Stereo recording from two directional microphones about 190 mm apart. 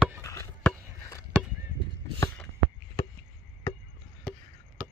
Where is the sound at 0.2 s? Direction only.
15° left (ahead or behind).